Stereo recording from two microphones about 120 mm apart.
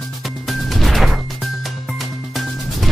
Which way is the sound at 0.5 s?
Centre (ahead or behind).